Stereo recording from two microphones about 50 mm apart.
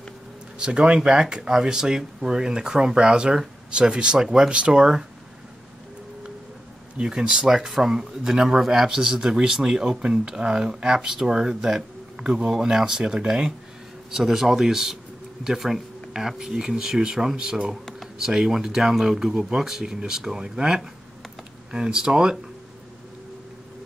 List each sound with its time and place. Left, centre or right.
0.6 s speech: centre
7.0 s speech: centre